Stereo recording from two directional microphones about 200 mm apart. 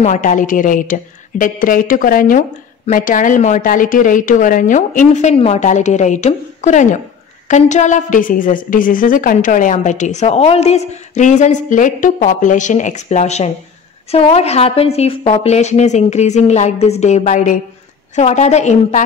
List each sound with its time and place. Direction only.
0.0 s a woman's voice: 35° left (ahead or behind)